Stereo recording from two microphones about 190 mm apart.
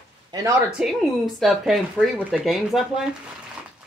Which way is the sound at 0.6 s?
5° right (ahead or behind).